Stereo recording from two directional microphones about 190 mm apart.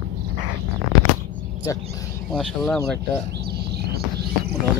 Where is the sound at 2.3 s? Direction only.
Centre (ahead or behind).